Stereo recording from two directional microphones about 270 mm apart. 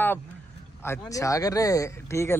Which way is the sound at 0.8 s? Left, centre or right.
Centre.